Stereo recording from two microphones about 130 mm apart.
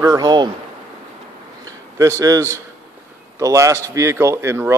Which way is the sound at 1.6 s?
25° right (ahead or behind).